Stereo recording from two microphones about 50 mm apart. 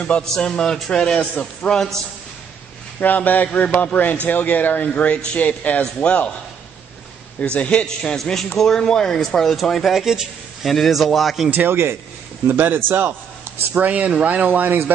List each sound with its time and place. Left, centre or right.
0.3 s speech: centre
3.0 s speech: left
7.3 s speech: left
7.8 s a man's voice: centre
11.5 s a man's voice: right
13.7 s speech: right